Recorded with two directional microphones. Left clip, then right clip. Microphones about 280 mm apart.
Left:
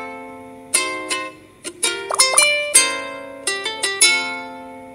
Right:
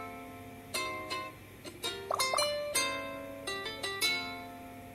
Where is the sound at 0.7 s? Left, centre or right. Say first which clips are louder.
Left 14 dB; left.